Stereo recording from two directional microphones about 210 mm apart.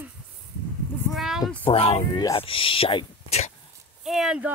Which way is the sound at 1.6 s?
25° left (ahead or behind).